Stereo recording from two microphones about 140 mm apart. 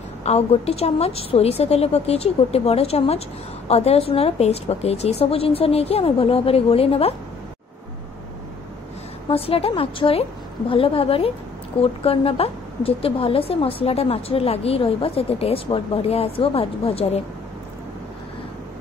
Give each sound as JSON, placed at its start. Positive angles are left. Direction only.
{"t": 0.2, "sound": "a woman's voice", "side_deg": 50}
{"t": 9.3, "sound": "a woman's voice", "side_deg": 45}